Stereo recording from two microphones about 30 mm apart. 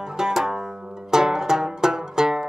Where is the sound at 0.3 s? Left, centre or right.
Centre.